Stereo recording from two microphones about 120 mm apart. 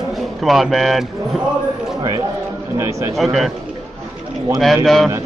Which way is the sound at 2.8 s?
25° right (ahead or behind).